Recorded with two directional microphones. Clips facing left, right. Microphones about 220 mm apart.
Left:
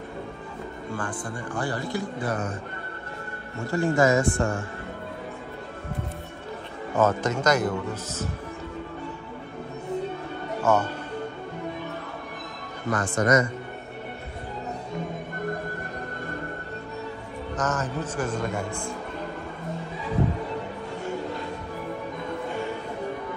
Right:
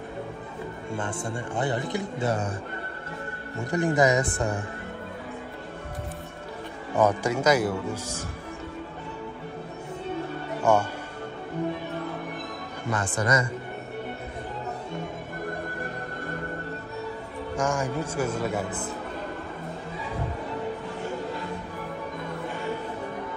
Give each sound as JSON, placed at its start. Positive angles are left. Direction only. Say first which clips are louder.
{"t": 0.9, "sound": "speech", "louder": "right 2 dB", "side_deg": -25}
{"t": 3.5, "sound": "a man's voice", "louder": "left 1 dB", "side_deg": -15}
{"t": 7.0, "sound": "a man's voice", "louder": "even", "side_deg": -10}
{"t": 10.6, "sound": "speech", "louder": "even", "side_deg": -10}
{"t": 12.9, "sound": "speech", "louder": "left 4 dB", "side_deg": -30}
{"t": 17.6, "sound": "a man's voice", "louder": "right 1 dB", "side_deg": -10}